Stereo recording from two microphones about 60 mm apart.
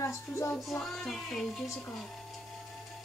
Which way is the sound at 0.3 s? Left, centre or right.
Left.